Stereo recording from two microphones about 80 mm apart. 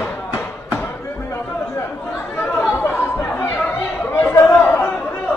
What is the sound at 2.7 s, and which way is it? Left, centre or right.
Chatter, left.